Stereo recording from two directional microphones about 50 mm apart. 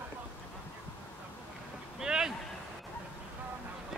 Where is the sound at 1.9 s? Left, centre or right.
Centre.